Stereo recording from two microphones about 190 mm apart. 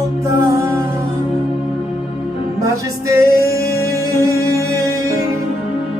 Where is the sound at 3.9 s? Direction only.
15° right (ahead or behind).